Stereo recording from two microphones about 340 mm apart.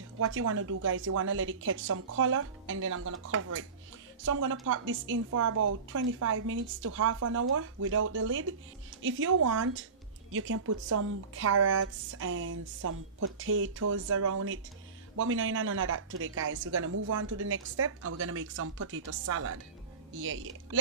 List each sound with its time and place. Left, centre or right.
0.2 s a woman's voice: right